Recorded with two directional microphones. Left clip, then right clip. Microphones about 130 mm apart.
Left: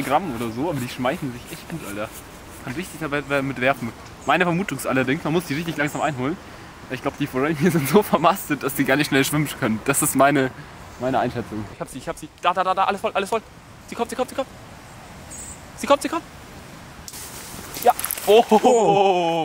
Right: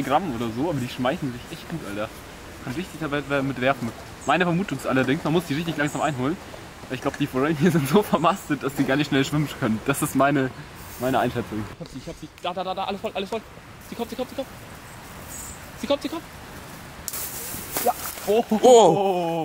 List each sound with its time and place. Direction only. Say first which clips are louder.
0.1 s speech: left 1 dB; centre (ahead or behind)
2.8 s speech: left 2 dB; centre (ahead or behind)
12.4 s speech: left 8 dB; 20° left (ahead or behind)
15.8 s speech: left 6 dB; 20° left (ahead or behind)
17.8 s horse: left 7 dB; centre (ahead or behind)
18.6 s speech: right 3 dB; 10° right (ahead or behind)
18.9 s speech: left 3 dB; 10° left (ahead or behind)